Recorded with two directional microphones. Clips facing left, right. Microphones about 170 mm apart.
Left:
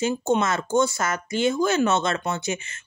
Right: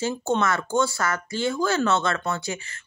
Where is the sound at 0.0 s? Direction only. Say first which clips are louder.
Left 2 dB; 15° left (ahead or behind).